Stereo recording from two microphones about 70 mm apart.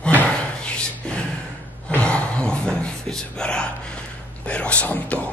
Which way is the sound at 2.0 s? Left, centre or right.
Centre.